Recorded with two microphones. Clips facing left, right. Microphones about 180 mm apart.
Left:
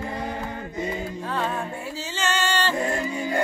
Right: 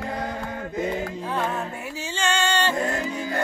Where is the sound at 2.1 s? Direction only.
15° right (ahead or behind).